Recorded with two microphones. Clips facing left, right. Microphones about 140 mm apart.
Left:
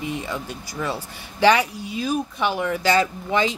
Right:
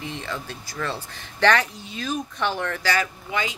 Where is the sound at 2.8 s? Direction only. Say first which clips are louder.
Left 7 dB; 25° left (ahead or behind).